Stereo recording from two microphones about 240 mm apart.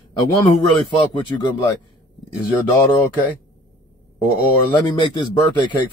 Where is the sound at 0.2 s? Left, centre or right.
Centre.